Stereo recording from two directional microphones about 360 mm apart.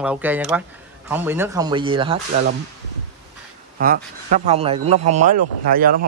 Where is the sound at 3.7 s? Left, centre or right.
Right.